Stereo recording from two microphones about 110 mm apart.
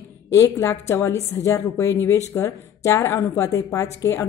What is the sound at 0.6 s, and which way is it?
A woman's voice, 25° left (ahead or behind).